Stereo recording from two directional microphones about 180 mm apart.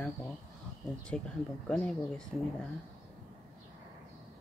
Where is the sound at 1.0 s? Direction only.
5° left (ahead or behind).